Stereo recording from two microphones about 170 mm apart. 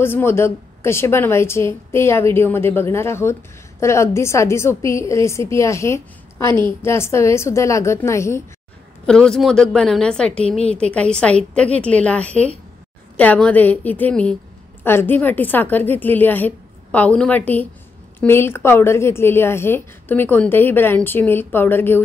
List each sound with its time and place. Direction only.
0.0 s a woman's voice: 15° left (ahead or behind)
9.0 s a woman's voice: 5° left (ahead or behind)